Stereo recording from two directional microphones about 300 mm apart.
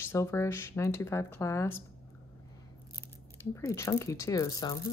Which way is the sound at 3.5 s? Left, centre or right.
Centre.